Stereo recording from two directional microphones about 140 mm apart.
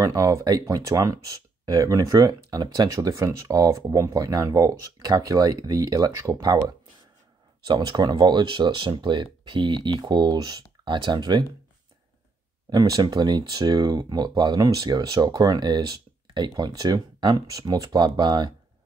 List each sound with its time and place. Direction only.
0.0 s speech: 25° right (ahead or behind)
12.6 s speech: 25° right (ahead or behind)